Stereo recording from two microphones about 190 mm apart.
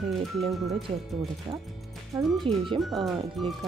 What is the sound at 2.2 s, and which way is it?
Speech, centre (ahead or behind).